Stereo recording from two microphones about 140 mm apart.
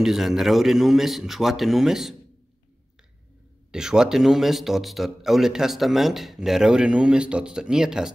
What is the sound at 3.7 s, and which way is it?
Speech, 5° right (ahead or behind).